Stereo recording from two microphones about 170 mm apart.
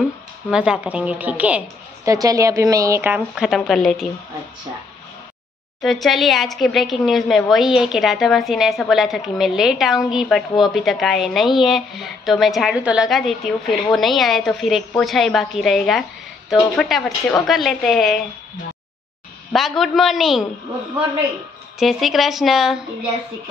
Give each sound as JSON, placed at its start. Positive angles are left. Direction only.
{"t": 0.5, "sound": "a woman's voice", "side_deg": -5}
{"t": 2.0, "sound": "a woman's voice", "side_deg": -20}
{"t": 5.8, "sound": "a woman's voice", "side_deg": 0}
{"t": 19.5, "sound": "a woman's voice", "side_deg": 0}
{"t": 21.7, "sound": "a woman's voice", "side_deg": 0}